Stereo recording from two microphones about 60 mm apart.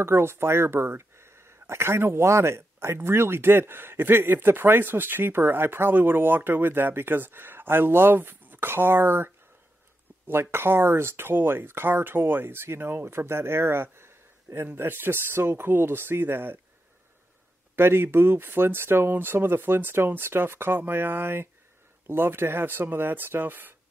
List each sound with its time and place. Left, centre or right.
0.0 s speech: right
17.7 s speech: right